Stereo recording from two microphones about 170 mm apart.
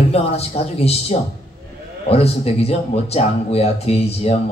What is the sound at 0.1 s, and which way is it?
Speech, 35° left (ahead or behind).